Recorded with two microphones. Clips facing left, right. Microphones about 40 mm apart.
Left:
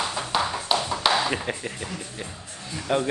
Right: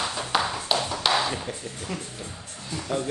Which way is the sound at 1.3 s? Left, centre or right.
Left.